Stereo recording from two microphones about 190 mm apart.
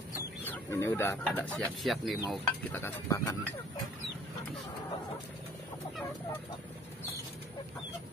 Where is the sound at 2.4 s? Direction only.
10° left (ahead or behind).